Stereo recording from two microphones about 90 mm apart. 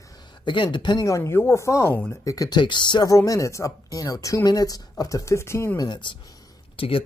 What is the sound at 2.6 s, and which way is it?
Speech, 60° left (ahead or behind).